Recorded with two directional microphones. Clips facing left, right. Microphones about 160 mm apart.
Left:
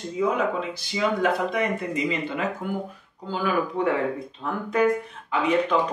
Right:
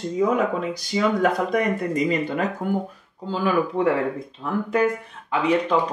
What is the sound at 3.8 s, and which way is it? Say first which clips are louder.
Speech: right 3 dB; 30° right (ahead or behind).